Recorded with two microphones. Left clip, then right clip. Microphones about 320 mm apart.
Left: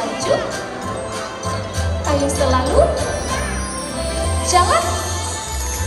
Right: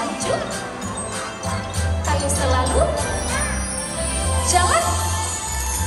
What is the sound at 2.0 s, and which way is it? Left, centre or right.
Music, centre.